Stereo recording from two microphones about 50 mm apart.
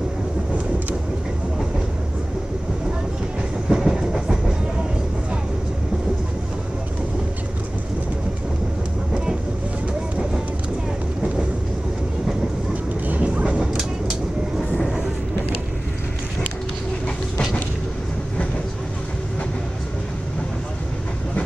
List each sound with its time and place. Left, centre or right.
3.6 s train: centre
9.1 s vehicle: centre
13.0 s vehicle: right
13.5 s vehicle: centre